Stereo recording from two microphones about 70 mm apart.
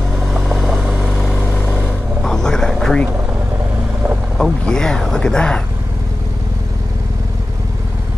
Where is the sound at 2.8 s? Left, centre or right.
Centre.